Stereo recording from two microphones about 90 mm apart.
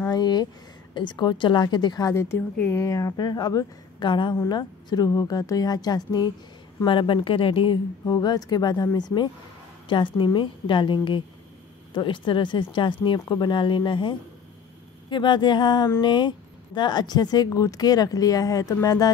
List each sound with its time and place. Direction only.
0.1 s a sound: 50° left (ahead or behind)
0.9 s a woman's voice: 60° left (ahead or behind)
2.1 s speech: 30° left (ahead or behind); by 6.3 s 50° left (ahead or behind)
6.9 s speech: 70° left (ahead or behind)
8.0 s a woman's voice: 45° left (ahead or behind)